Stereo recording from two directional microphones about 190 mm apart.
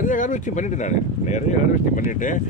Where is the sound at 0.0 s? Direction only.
45° left (ahead or behind).